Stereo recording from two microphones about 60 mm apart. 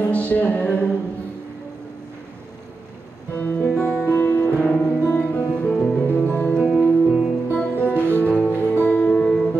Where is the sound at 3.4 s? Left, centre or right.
Left.